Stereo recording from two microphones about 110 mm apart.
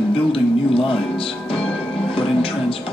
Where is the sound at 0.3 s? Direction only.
55° left (ahead or behind).